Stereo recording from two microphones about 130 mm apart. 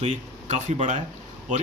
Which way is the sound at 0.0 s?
65° right (ahead or behind).